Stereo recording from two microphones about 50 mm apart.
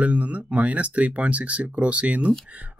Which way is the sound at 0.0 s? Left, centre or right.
Right.